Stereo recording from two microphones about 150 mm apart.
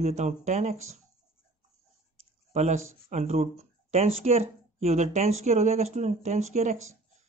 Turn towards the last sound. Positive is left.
turn(degrees=-50)  # may be behind; listen again after turning